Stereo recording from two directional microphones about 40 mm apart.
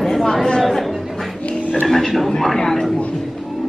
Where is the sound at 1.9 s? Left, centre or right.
Centre.